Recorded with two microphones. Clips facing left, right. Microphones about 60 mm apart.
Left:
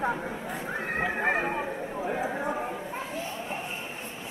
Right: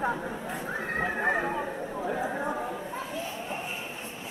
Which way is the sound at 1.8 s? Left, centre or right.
Centre.